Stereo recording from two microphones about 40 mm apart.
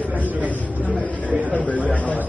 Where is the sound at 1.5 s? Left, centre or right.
Left.